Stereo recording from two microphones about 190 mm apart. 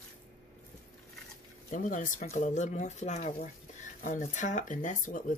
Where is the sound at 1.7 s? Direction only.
40° left (ahead or behind).